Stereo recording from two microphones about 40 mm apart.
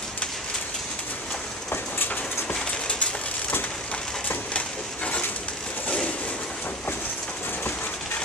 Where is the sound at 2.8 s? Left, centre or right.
Left.